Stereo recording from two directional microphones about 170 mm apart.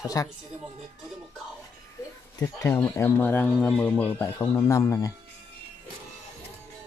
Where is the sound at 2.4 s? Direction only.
20° left (ahead or behind).